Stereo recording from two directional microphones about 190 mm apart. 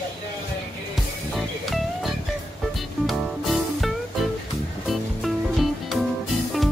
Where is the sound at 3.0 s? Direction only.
Centre (ahead or behind).